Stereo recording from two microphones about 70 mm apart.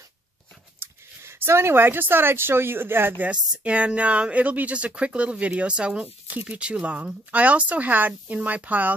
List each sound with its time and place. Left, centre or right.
0.7 s speech: right
3.3 s speech: centre